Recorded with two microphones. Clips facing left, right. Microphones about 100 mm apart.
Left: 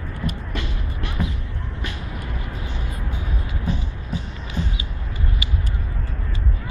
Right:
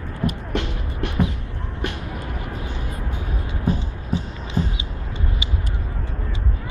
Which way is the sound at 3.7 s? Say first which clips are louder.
Right 5 dB; 45° right (ahead or behind).